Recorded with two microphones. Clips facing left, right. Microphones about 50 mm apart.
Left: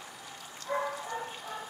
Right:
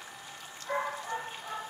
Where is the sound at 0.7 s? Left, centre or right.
Right.